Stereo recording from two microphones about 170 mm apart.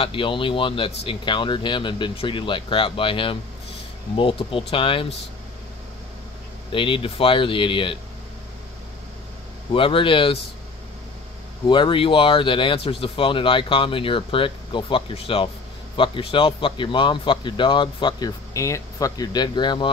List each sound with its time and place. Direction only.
0.0 s a man's voice: 30° left (ahead or behind)
6.7 s speech: 30° left (ahead or behind)
9.7 s speech: 30° left (ahead or behind)
11.6 s a man's voice: 25° left (ahead or behind)